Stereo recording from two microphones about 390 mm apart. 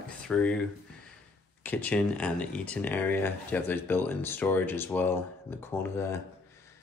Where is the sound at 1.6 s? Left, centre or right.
Centre.